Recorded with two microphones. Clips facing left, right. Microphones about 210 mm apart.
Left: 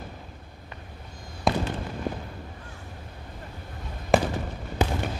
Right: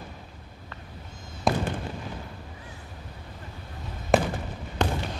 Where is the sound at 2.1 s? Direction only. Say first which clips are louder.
Left 7 dB; 50° left (ahead or behind).